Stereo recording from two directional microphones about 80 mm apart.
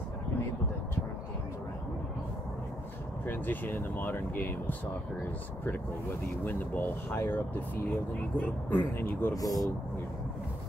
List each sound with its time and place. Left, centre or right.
3.3 s speech: left
6.4 s speech: left
9.3 s speech: left